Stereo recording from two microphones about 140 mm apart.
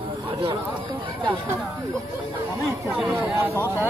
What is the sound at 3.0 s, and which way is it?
Speech, 10° right (ahead or behind).